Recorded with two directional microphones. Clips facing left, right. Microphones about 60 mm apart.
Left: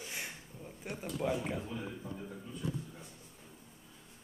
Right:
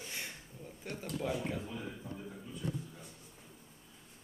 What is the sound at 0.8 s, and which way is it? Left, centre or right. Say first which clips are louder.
Speech: left 2 dB; centre.